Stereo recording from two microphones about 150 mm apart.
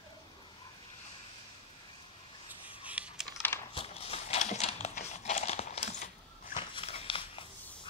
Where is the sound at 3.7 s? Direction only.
40° left (ahead or behind).